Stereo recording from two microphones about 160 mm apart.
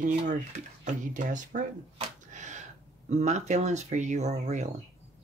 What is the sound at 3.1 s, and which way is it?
Speech, 45° right (ahead or behind).